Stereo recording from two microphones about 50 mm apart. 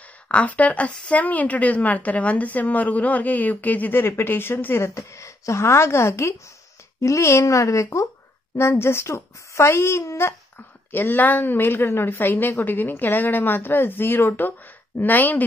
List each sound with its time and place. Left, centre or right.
0.3 s a woman's voice: left
4.8 s a woman's voice: left
7.0 s speech: left
8.5 s a woman's voice: left
10.9 s a woman's voice: left